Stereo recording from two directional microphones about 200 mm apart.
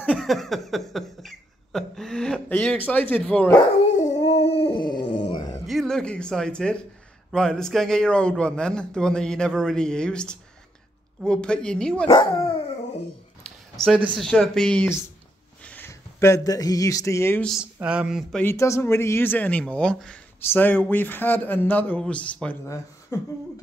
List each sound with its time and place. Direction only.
0.1 s a sound: centre (ahead or behind)
3.9 s dog: 35° left (ahead or behind); by 5.6 s 20° left (ahead or behind)
5.7 s a man's voice: centre (ahead or behind)
12.1 s speech: 25° left (ahead or behind)
14.0 s a man's voice: centre (ahead or behind)
17.7 s a man's voice: 5° right (ahead or behind)
18.4 s speech: 15° left (ahead or behind)